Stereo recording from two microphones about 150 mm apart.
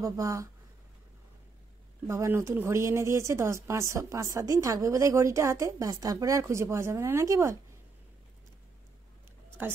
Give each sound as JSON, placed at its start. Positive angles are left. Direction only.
{"t": 0.0, "sound": "speech", "side_deg": -20}
{"t": 2.0, "sound": "speech", "side_deg": -15}
{"t": 9.6, "sound": "a woman's voice", "side_deg": -15}